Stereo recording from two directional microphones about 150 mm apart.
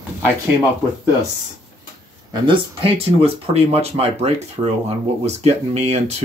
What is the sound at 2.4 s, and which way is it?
Speech, 35° right (ahead or behind).